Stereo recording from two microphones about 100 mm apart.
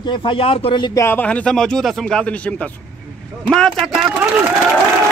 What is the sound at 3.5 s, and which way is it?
Speech, centre (ahead or behind).